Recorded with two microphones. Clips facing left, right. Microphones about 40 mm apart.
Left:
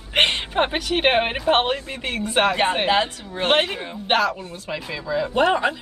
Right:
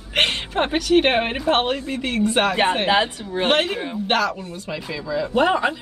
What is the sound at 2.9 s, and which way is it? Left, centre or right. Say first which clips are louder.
Speech: right 1 dB; centre.